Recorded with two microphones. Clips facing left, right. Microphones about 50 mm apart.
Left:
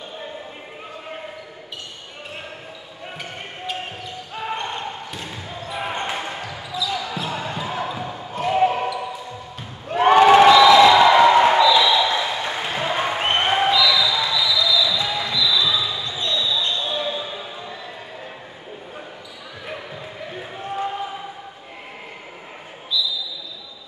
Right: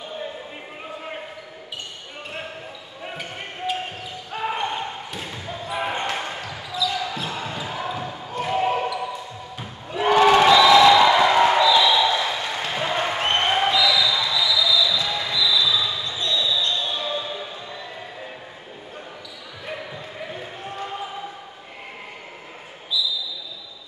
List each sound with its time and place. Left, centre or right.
3.2 s basketball bounce: centre
9.8 s a sound: left
10.2 s crowd: centre
10.6 s music: centre
11.5 s basketball bounce: centre
12.2 s applause: centre
13.7 s basketball bounce: centre
13.9 s basketball bounce: centre
16.0 s basketball bounce: left
16.3 s basketball bounce: centre
19.6 s basketball bounce: centre
22.9 s basketball bounce: centre